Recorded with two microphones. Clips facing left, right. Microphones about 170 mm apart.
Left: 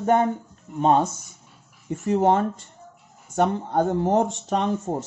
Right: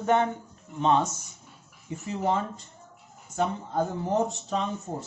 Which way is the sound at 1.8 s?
60° left (ahead or behind).